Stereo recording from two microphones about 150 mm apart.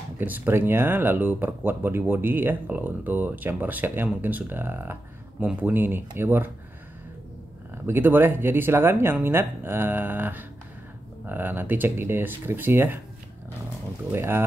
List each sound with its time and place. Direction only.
0.2 s speech: 15° right (ahead or behind)
7.7 s speech: 15° right (ahead or behind)
14.1 s speech: 15° right (ahead or behind)